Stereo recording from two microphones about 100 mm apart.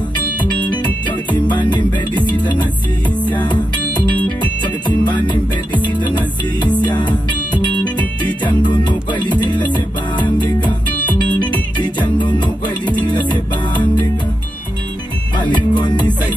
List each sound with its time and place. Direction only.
0.7 s music: 50° left (ahead or behind)
4.2 s music: 15° left (ahead or behind)
5.3 s music: 50° left (ahead or behind)
12.2 s music: 50° left (ahead or behind)
15.3 s music: 50° left (ahead or behind)